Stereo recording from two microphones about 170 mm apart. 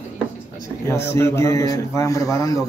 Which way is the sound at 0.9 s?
15° left (ahead or behind).